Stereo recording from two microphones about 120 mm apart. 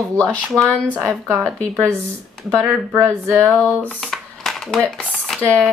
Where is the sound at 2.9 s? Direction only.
20° right (ahead or behind).